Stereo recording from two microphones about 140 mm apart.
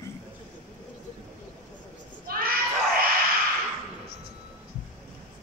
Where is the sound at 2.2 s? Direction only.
90° right.